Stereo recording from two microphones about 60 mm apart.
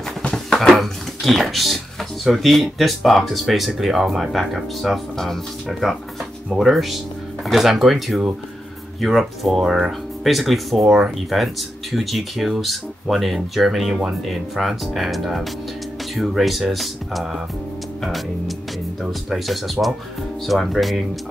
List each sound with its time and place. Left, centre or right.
0.3 s speech: centre
19.0 s speech: centre